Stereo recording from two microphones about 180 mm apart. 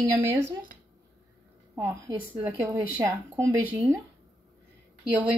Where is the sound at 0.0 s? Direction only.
15° right (ahead or behind).